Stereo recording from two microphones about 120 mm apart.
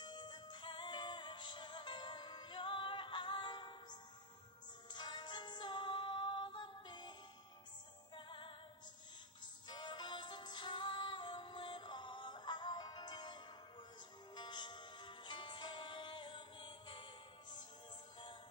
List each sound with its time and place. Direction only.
0.0 s music: 40° left (ahead or behind)
9.7 s music: 40° left (ahead or behind)